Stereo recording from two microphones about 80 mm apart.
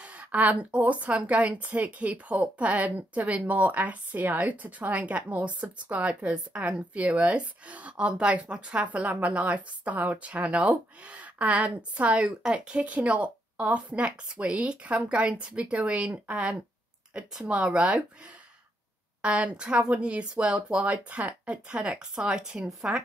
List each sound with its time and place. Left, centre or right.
0.0 s a woman's voice: centre
19.2 s a woman's voice: centre